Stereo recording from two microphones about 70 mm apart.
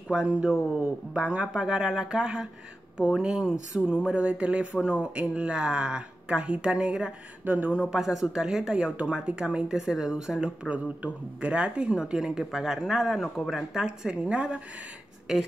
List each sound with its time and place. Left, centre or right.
0.1 s speech: centre
7.4 s speech: right
7.7 s speech: centre
13.7 s speech: centre